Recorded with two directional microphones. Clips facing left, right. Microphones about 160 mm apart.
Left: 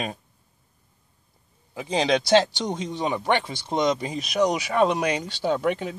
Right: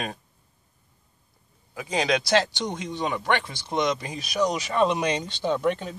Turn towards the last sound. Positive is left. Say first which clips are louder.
# left 1 dB
turn(degrees=10)  # may be behind; listen again after turning